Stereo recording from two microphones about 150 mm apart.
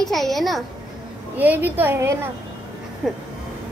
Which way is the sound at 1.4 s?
10° right (ahead or behind).